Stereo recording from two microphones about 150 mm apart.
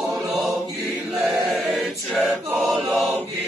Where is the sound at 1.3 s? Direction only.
Centre (ahead or behind).